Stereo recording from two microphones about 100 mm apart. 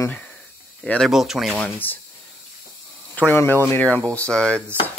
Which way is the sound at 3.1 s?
20° left (ahead or behind).